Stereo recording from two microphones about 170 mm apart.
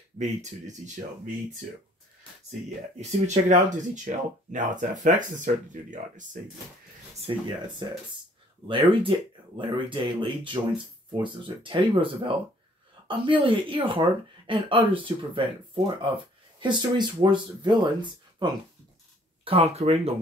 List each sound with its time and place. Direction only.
0.2 s speech: 45° right (ahead or behind)
3.0 s speech: 45° right (ahead or behind)
7.3 s speech: 30° right (ahead or behind)
8.6 s speech: 30° right (ahead or behind)